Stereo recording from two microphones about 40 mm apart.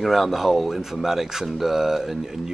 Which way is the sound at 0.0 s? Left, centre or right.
Centre.